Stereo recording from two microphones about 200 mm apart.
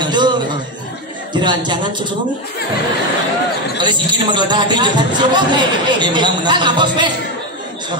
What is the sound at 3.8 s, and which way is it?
A man's voice, 25° right (ahead or behind).